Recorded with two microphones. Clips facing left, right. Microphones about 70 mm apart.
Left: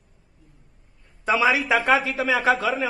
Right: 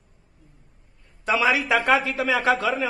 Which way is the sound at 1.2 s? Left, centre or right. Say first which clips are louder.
Left 1 dB; centre.